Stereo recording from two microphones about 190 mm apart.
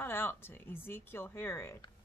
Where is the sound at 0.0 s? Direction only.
10° left (ahead or behind).